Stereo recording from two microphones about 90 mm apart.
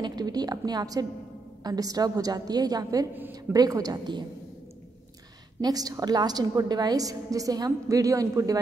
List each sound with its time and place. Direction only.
0.0 s a sound: 50° right (ahead or behind)
1.6 s a woman's voice: 45° right (ahead or behind)
5.6 s a woman's voice: 45° right (ahead or behind)